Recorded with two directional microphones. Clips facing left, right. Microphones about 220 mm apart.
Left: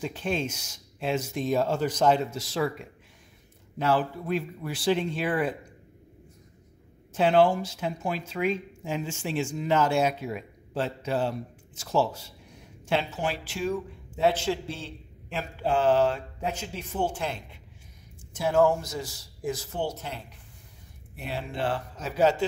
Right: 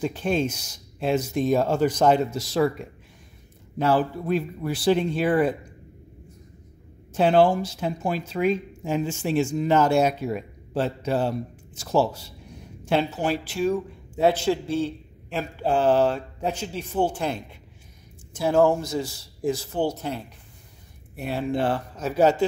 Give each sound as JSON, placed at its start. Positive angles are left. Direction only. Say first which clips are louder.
{"t": 0.0, "sound": "speech", "louder": "right 5 dB", "side_deg": -40}
{"t": 7.2, "sound": "speech", "louder": "right 3 dB", "side_deg": -35}
{"t": 21.2, "sound": "a man's voice", "louder": "right 7 dB", "side_deg": -45}